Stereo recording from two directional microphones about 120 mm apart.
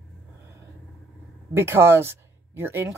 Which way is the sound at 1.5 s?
20° right (ahead or behind).